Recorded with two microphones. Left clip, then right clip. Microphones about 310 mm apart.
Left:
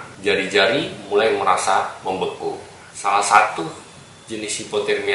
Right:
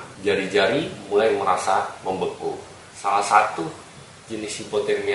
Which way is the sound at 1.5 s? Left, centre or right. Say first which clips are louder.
Left 3 dB; centre.